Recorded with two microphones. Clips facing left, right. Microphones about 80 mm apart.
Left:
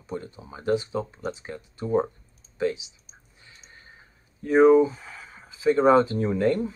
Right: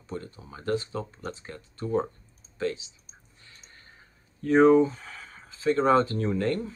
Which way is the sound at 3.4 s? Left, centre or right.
Centre.